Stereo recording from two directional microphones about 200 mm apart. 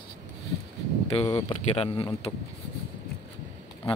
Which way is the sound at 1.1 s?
30° left (ahead or behind).